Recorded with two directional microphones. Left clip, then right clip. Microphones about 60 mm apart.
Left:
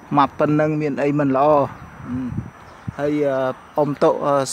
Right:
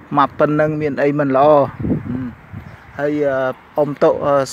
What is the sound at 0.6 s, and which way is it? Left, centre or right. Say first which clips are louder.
A man's voice: right 3 dB; centre.